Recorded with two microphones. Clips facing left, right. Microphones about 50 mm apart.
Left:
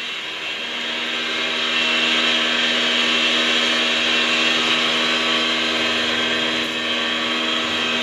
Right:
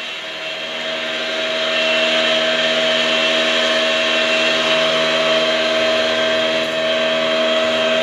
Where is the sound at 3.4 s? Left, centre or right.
Centre.